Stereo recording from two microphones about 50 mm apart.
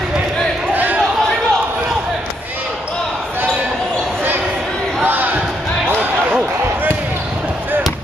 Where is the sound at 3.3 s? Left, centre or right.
Right.